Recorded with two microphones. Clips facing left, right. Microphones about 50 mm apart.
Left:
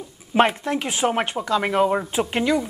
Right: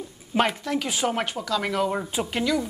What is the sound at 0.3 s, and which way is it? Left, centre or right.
Speech, left.